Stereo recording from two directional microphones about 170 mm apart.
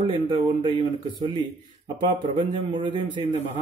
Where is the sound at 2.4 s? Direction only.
25° right (ahead or behind).